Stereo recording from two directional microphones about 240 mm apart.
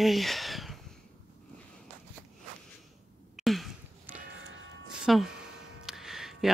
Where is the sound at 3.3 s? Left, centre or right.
Centre.